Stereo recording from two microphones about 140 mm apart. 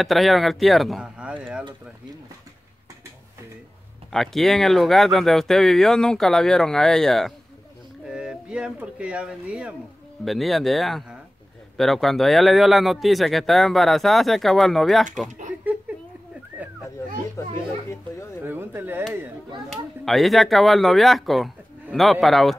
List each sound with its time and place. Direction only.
0.0 s a man's voice: centre (ahead or behind)
4.1 s a man's voice: centre (ahead or behind)
15.7 s a sound: 10° right (ahead or behind)
17.4 s a child's voice: 20° left (ahead or behind)
17.8 s a sound: 20° left (ahead or behind)
18.4 s speech: 15° right (ahead or behind)
19.7 s a man's voice: centre (ahead or behind)